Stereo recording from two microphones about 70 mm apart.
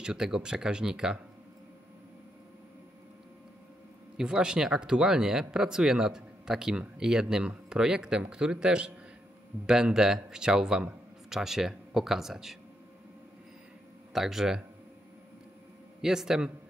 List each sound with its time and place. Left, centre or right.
0.0 s speech: centre
4.2 s speech: centre
14.1 s speech: centre
16.0 s speech: centre